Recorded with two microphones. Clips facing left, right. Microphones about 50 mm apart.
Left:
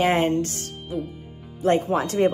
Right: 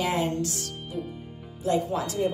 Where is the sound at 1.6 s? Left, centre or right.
Left.